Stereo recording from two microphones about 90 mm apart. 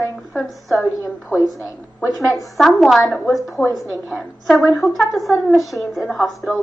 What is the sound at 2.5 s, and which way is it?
Speech, centre (ahead or behind).